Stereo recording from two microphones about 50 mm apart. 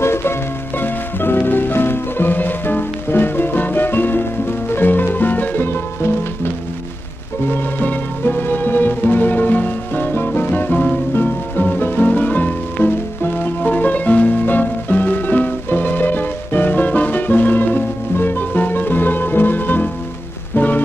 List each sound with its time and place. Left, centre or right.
0.0 s music: left
7.4 s music: left